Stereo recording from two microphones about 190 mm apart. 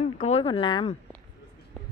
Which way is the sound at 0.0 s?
35° left (ahead or behind).